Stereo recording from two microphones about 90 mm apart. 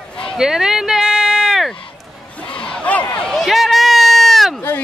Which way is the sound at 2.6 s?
10° left (ahead or behind).